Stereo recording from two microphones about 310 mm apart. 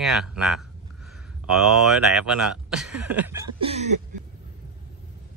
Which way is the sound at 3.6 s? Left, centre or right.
Centre.